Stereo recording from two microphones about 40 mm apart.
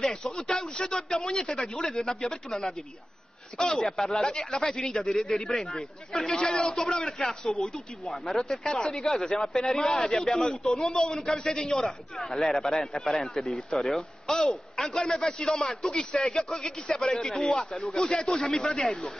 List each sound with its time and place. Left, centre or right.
0.0 s speech: centre